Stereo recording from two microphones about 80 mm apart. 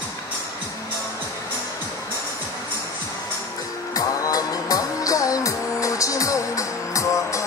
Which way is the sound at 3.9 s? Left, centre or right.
Left.